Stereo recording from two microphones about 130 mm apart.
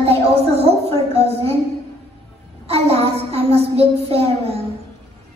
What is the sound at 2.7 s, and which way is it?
A child's voice, 50° right (ahead or behind).